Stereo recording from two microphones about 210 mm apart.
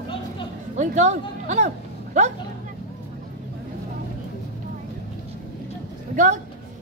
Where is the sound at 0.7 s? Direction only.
35° right (ahead or behind).